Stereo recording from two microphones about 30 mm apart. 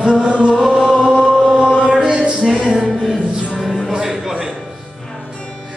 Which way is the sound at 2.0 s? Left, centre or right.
Right.